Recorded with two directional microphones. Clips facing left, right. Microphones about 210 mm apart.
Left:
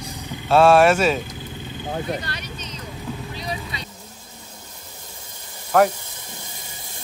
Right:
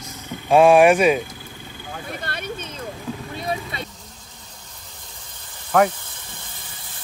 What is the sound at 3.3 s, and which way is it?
Vehicle, 50° right (ahead or behind).